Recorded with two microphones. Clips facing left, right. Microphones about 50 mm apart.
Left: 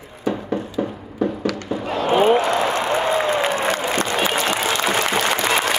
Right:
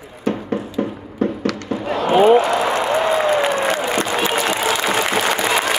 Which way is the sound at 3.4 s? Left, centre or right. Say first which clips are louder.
Right 2 dB; centre.